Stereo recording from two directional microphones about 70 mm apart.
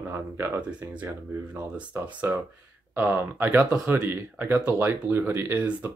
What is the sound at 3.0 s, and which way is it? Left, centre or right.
Speech, right.